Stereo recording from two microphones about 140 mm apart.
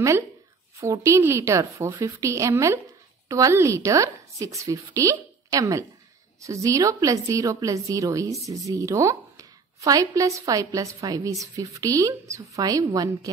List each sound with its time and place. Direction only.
0.7 s a woman's voice: 20° right (ahead or behind)